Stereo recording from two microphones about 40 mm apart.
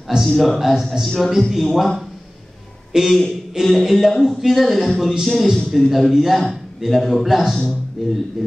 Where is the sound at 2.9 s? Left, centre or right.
Centre.